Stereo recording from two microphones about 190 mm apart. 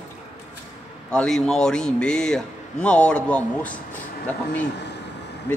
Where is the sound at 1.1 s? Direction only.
5° left (ahead or behind).